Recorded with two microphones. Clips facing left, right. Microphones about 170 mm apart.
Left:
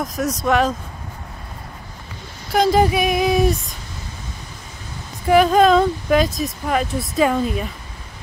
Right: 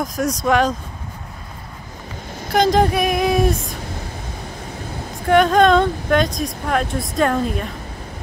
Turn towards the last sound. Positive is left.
turn(degrees=0)  # may be behind; listen again after turning